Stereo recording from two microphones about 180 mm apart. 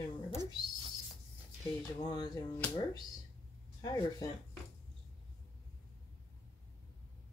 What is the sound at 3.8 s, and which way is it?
Speech, 20° left (ahead or behind).